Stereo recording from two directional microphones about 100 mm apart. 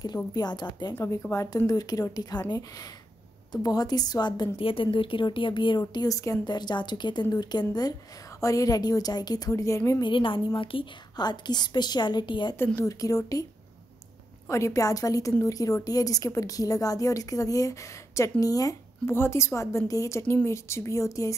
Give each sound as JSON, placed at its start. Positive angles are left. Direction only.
{"t": 0.0, "sound": "a woman's voice", "side_deg": 45}
{"t": 0.9, "sound": "a woman's voice", "side_deg": 25}
{"t": 3.6, "sound": "a woman's voice", "side_deg": 40}
{"t": 4.6, "sound": "a woman's voice", "side_deg": 65}
{"t": 6.4, "sound": "a woman's voice", "side_deg": 45}
{"t": 10.0, "sound": "a woman's voice", "side_deg": 55}
{"t": 12.5, "sound": "a woman's voice", "side_deg": 25}
{"t": 14.5, "sound": "a woman's voice", "side_deg": 30}
{"t": 19.0, "sound": "a woman's voice", "side_deg": 25}